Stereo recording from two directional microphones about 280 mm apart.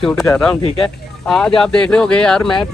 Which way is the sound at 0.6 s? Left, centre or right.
Centre.